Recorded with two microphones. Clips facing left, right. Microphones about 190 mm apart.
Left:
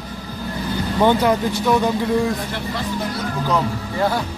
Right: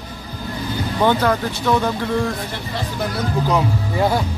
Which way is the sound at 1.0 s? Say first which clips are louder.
Left 1 dB; 15° left (ahead or behind).